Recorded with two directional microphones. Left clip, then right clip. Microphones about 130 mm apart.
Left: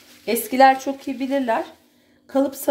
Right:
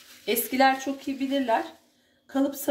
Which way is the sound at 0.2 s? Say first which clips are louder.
Left 7 dB; 35° left (ahead or behind).